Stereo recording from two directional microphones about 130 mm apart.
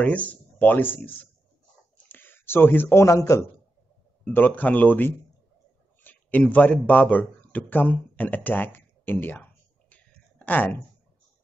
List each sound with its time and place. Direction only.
0.0 s speech: 10° left (ahead or behind)
2.0 s a sound: 15° left (ahead or behind)
4.2 s a man's voice: 15° left (ahead or behind)